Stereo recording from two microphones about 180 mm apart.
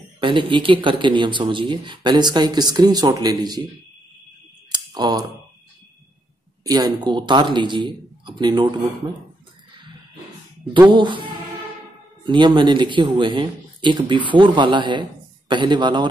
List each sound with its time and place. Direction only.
0.2 s speech: 30° right (ahead or behind)
4.6 s clicking: 25° right (ahead or behind)
6.6 s speech: 20° right (ahead or behind)
10.9 s speech: 25° right (ahead or behind)
12.3 s speech: 25° right (ahead or behind)